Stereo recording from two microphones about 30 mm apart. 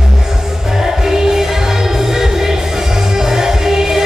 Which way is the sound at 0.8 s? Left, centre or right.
Centre.